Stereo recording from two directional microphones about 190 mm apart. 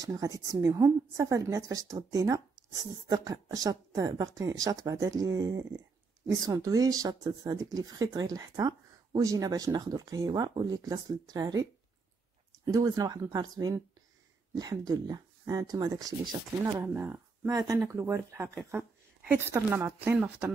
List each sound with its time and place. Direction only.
0.0 s a woman's voice: 20° right (ahead or behind)
12.7 s a woman's voice: 20° right (ahead or behind)